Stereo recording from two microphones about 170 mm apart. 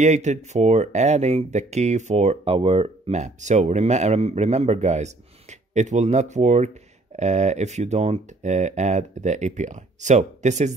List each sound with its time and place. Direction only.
0.0 s speech: 45° right (ahead or behind)